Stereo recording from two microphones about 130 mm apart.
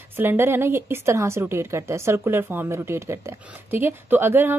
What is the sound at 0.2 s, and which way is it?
A woman's voice, 20° right (ahead or behind).